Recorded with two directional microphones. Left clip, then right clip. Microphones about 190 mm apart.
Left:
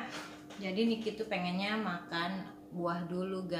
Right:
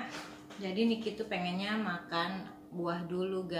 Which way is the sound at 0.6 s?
15° left (ahead or behind).